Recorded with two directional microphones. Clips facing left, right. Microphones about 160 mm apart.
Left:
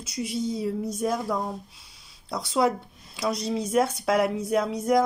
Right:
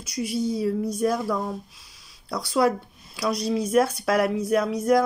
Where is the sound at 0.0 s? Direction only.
25° left (ahead or behind).